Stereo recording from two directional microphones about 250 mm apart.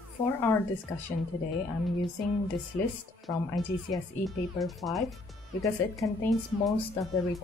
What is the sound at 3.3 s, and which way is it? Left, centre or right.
Speech, centre.